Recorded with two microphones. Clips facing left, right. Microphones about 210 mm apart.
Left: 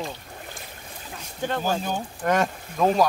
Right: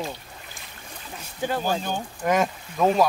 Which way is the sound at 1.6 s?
5° left (ahead or behind).